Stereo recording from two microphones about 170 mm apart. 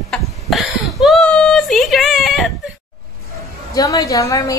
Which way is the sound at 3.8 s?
20° left (ahead or behind).